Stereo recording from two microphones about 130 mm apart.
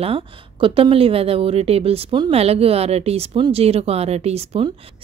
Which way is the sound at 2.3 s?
50° right (ahead or behind).